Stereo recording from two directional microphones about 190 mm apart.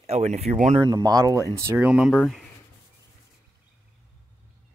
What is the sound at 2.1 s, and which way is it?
Speech, 5° left (ahead or behind).